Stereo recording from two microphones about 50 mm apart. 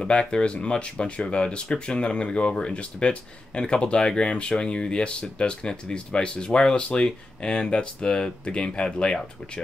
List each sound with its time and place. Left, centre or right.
0.0 s speech: centre